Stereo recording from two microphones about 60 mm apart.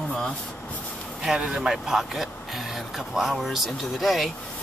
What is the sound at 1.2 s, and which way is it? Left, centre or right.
Speech, centre.